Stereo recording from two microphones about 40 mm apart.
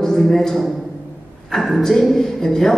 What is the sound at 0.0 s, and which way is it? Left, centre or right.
Speech, centre.